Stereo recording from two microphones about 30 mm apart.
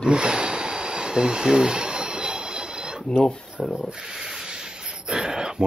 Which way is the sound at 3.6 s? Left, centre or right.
Centre.